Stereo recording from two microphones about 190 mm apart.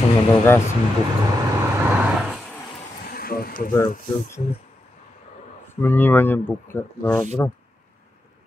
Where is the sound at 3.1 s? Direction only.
50° left (ahead or behind).